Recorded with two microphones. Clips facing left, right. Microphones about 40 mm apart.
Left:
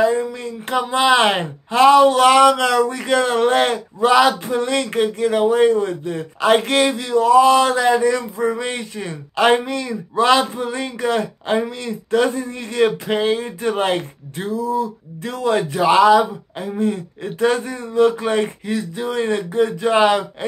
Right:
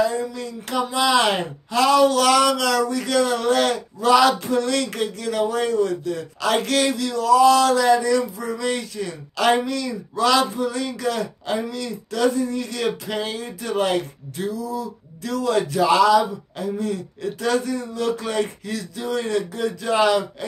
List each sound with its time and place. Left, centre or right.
0.0 s speech: left